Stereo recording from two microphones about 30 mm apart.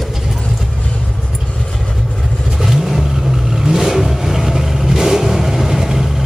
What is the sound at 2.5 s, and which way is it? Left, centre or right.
Vehicle, centre.